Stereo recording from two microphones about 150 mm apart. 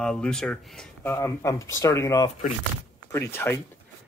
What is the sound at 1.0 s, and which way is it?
Speech, 15° left (ahead or behind).